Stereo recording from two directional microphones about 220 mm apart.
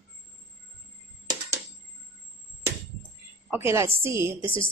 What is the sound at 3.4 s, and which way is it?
A woman's voice, 10° right (ahead or behind).